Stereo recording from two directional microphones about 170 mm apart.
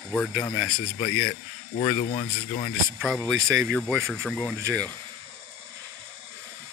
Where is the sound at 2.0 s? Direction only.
35° left (ahead or behind).